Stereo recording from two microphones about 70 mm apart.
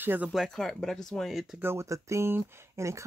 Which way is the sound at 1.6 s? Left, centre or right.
Right.